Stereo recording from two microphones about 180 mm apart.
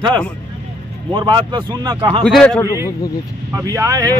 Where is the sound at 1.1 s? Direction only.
25° right (ahead or behind).